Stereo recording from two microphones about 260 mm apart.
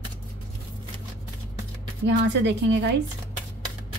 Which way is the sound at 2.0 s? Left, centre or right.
Right.